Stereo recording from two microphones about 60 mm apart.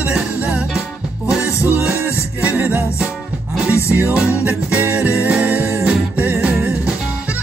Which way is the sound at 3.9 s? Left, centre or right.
Right.